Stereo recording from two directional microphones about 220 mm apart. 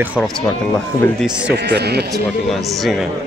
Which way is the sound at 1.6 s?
50° right (ahead or behind).